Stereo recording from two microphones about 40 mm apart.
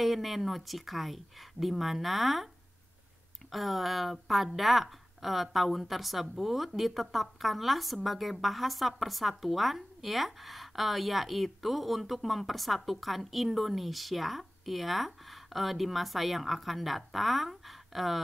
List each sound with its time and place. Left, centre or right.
0.0 s a woman's voice: centre
3.5 s a woman's voice: centre